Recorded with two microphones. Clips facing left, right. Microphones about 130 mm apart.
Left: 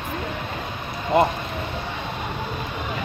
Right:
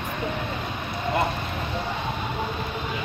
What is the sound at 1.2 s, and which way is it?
Speech, 25° left (ahead or behind).